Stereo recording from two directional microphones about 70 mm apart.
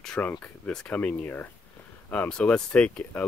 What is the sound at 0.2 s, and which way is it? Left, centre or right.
Speech, left.